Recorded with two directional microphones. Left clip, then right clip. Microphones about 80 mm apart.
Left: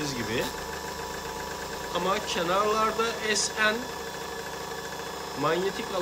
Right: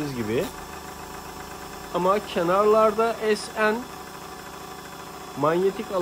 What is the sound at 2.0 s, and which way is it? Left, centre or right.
Speech, right.